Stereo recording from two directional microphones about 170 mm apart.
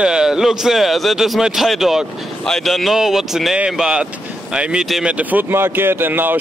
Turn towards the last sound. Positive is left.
turn(degrees=-10)  # may be behind; listen again after turning